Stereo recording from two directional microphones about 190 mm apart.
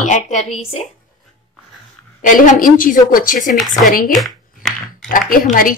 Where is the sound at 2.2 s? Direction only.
45° left (ahead or behind).